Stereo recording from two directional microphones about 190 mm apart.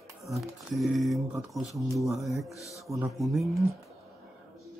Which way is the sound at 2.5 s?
15° left (ahead or behind).